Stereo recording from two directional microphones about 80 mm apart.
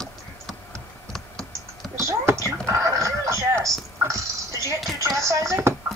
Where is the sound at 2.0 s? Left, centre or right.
Right.